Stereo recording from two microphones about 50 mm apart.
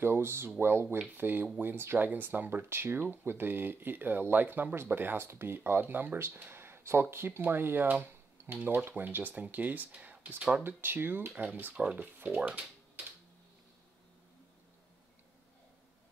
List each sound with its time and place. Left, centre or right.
0.0 s speech: right
6.1 s speech: right
10.8 s speech: right
11.7 s speech: right